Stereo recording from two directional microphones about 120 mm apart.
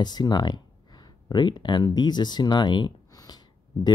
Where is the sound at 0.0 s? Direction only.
35° left (ahead or behind).